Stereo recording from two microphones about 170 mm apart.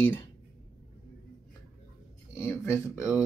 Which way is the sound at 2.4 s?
15° left (ahead or behind).